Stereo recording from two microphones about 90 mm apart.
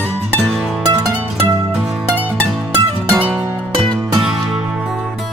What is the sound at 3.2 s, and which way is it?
Music, 15° right (ahead or behind).